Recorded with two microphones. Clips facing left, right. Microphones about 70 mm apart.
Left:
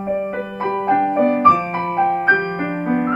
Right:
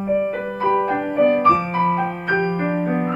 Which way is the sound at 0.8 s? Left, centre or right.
Left.